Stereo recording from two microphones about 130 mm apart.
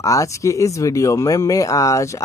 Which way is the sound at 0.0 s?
25° left (ahead or behind).